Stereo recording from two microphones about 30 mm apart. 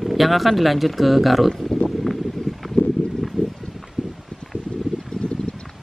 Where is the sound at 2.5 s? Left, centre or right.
Centre.